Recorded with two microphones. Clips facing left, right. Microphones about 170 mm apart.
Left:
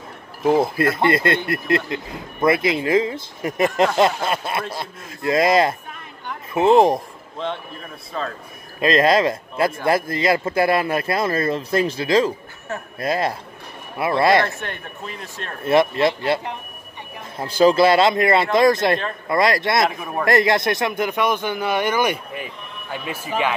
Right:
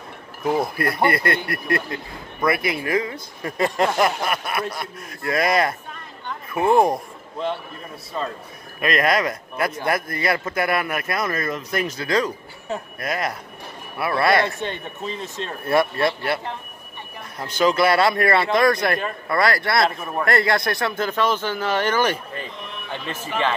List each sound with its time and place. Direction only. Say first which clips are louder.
0.5 s speech: left 5 dB; 25° left (ahead or behind)
8.2 s a man's voice: even; 5° right (ahead or behind)
8.7 s speech: left 4 dB; 25° left (ahead or behind)
14.4 s speech: right 1 dB; 20° right (ahead or behind)
15.6 s speech: left 3 dB; 20° left (ahead or behind)
17.4 s speech: left 4 dB; 35° left (ahead or behind); by 23.5 s 10° left (ahead or behind)